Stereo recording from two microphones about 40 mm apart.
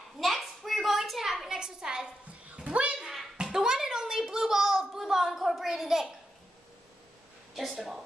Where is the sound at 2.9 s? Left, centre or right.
Centre.